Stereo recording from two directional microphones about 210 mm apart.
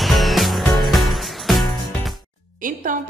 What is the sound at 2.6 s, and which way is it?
Music, 40° right (ahead or behind).